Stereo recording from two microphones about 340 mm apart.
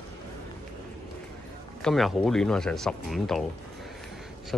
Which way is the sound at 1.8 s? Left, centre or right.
Centre.